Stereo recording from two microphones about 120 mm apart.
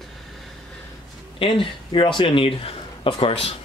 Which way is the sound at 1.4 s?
45° left (ahead or behind).